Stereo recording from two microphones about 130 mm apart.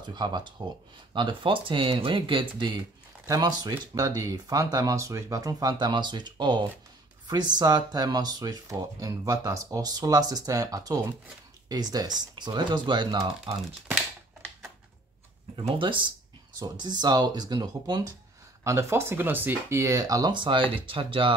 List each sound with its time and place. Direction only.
0.0 s speech: 35° right (ahead or behind)
15.5 s speech: 40° right (ahead or behind)
18.6 s speech: 20° right (ahead or behind); by 21.4 s 40° right (ahead or behind)